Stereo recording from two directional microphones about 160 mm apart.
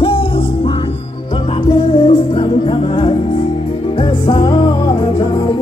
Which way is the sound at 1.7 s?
30° left (ahead or behind).